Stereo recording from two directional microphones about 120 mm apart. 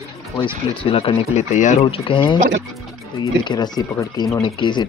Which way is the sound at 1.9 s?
45° left (ahead or behind).